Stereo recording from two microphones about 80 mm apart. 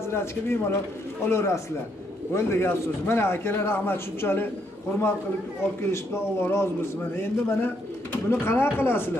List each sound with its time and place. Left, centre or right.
0.1 s a man's voice: left
5.8 s a man's voice: left